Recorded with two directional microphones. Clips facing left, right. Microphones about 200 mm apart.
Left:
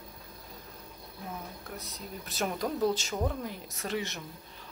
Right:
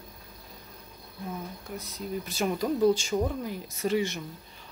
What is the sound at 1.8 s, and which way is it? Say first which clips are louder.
Speech: right 8 dB; centre (ahead or behind).